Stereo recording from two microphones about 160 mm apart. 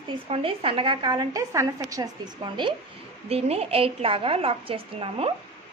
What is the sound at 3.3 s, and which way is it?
A woman's voice, 40° right (ahead or behind).